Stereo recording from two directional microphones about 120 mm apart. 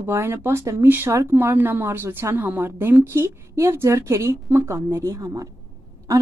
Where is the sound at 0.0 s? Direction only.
20° right (ahead or behind).